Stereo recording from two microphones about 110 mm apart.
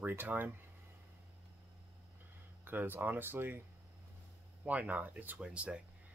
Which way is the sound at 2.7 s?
20° right (ahead or behind).